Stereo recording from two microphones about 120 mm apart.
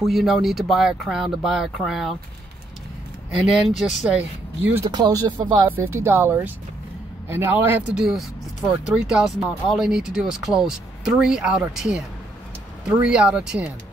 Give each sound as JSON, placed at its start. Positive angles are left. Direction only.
{"t": 0.0, "sound": "speech", "side_deg": 0}
{"t": 3.3, "sound": "speech", "side_deg": -5}
{"t": 4.9, "sound": "speech", "side_deg": -35}
{"t": 5.7, "sound": "speech", "side_deg": -20}
{"t": 7.9, "sound": "speech", "side_deg": -5}
{"t": 13.0, "sound": "speech", "side_deg": -10}